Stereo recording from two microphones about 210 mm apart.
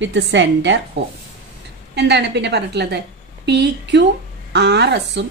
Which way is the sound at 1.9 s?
55° right (ahead or behind).